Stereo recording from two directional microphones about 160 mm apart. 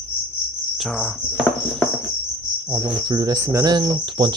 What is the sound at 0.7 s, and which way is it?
Cricket, centre (ahead or behind).